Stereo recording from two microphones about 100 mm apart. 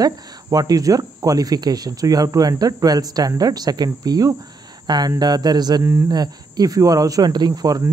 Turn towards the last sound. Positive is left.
turn(degrees=-40)  # may be behind; listen again after turning